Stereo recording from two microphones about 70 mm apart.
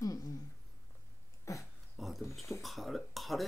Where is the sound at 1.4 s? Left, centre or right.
Left.